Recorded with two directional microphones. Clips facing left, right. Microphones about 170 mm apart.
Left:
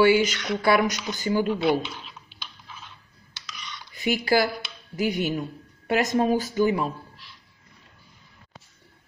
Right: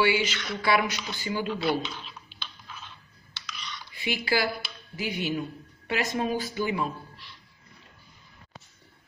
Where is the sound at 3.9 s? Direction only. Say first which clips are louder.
Left 6 dB; 45° left (ahead or behind).